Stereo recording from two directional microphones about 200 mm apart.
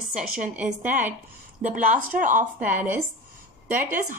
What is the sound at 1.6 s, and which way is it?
Speech, 40° right (ahead or behind).